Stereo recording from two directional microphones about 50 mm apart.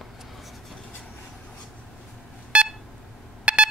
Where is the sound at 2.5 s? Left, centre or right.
Right.